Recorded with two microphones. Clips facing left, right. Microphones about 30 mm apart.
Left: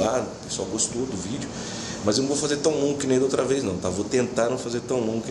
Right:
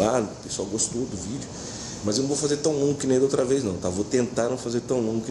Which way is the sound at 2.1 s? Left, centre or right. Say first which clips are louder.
Left 1 dB; left.